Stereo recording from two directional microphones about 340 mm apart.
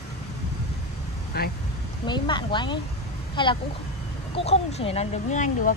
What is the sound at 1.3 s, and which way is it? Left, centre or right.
Speech, left.